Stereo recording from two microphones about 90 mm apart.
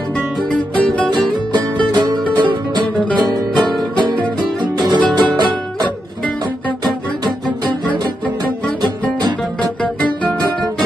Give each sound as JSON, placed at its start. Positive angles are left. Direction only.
{"t": 0.5, "sound": "music", "side_deg": 10}
{"t": 1.5, "sound": "music", "side_deg": -50}
{"t": 4.6, "sound": "music", "side_deg": -55}